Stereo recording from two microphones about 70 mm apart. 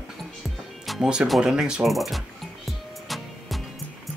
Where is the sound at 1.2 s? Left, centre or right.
Centre.